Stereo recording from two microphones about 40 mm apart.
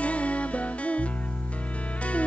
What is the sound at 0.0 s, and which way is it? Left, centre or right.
Music, left.